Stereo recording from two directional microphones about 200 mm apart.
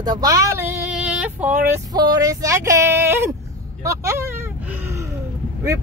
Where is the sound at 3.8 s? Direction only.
15° right (ahead or behind).